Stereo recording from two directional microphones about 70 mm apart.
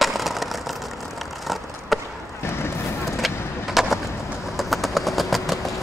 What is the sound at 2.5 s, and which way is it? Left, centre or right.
Vehicle, left.